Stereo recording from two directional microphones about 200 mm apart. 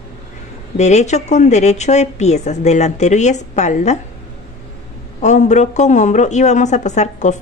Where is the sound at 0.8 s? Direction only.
35° left (ahead or behind).